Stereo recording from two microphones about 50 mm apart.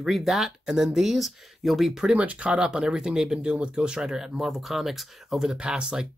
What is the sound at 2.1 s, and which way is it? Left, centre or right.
Speech, right.